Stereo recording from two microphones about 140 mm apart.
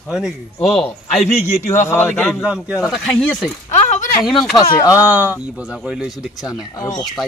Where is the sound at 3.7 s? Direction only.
65° left (ahead or behind).